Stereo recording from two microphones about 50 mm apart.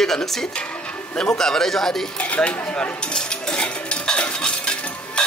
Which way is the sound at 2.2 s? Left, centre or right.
Left.